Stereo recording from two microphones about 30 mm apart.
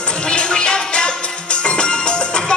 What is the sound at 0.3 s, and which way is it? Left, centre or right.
Music, left.